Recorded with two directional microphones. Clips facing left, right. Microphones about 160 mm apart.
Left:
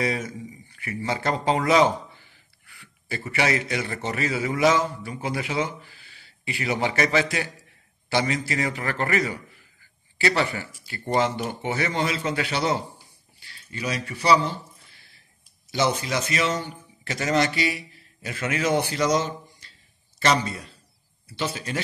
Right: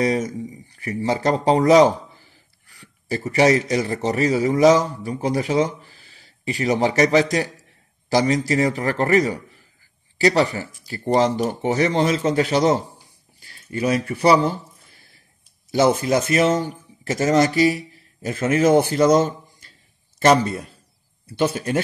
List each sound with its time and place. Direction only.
0.0 s speech: 40° right (ahead or behind)
15.7 s a man's voice: 50° right (ahead or behind)